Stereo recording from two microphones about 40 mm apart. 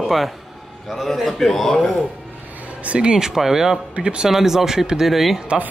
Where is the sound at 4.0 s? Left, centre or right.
Right.